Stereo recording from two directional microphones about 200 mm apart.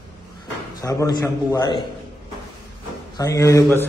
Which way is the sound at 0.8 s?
15° left (ahead or behind).